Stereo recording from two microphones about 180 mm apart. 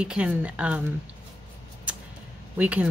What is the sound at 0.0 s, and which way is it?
Speech, 5° right (ahead or behind).